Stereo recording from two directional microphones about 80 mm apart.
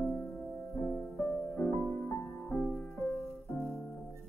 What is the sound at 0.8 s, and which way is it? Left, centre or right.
Music, left.